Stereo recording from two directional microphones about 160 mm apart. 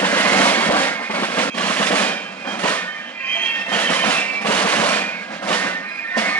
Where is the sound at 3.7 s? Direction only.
10° left (ahead or behind).